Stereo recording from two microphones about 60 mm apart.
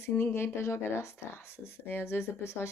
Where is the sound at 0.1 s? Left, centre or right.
Left.